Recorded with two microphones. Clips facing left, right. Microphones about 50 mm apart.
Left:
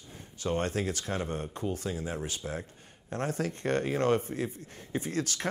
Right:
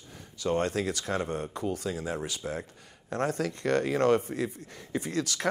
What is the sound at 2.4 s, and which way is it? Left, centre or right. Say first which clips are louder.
Speech: right 3 dB; right.